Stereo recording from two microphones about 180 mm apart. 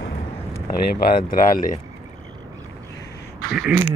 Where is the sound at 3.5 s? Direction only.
5° right (ahead or behind).